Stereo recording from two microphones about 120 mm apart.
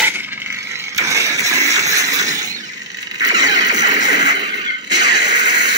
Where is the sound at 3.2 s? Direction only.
35° right (ahead or behind).